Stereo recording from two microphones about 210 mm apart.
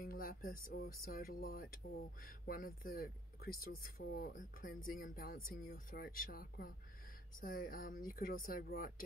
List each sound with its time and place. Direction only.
0.0 s speech: 45° left (ahead or behind)